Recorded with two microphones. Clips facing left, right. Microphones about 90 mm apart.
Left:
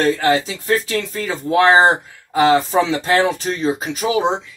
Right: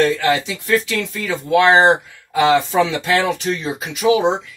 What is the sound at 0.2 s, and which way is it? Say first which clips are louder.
Speech: left 1 dB; 40° left (ahead or behind).